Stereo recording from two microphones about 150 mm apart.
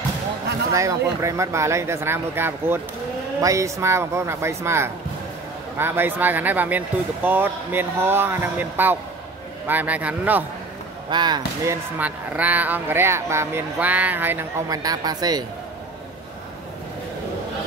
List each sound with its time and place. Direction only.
0.7 s speech: 20° right (ahead or behind)
11.1 s speech: 30° right (ahead or behind); by 14.8 s 15° right (ahead or behind)
14.8 s speech: 25° right (ahead or behind)